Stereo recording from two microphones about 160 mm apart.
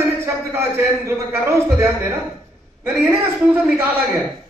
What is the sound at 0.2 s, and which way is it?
Music, 15° right (ahead or behind).